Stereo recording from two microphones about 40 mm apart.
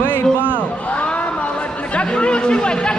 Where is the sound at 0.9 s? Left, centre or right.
Left.